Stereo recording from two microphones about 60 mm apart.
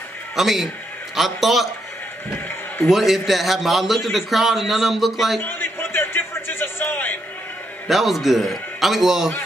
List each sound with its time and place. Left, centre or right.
0.4 s a man's voice: centre
2.9 s a man's voice: centre
5.4 s a sound: left
7.9 s a man's voice: centre